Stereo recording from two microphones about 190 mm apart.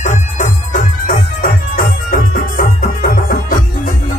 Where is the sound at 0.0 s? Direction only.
40° left (ahead or behind).